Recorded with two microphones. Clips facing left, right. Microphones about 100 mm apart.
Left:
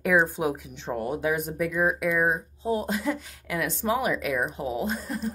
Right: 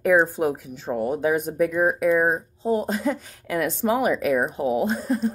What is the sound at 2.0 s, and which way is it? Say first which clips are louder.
Speech: right 5 dB; 25° right (ahead or behind).